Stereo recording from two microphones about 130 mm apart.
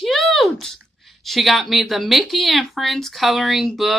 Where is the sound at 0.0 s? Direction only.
Centre (ahead or behind).